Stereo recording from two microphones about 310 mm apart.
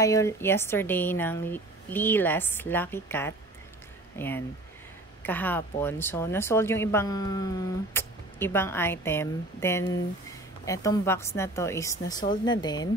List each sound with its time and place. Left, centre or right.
0.0 s speech: centre